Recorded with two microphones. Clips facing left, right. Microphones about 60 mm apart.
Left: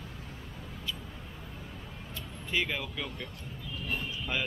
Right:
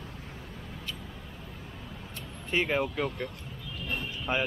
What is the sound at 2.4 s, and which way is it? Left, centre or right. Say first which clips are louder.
Speech: right 5 dB; right.